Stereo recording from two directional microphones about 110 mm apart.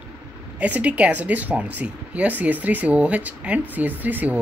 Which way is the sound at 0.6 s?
15° right (ahead or behind).